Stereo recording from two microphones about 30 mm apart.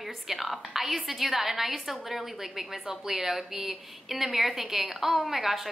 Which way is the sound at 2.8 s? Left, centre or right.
Right.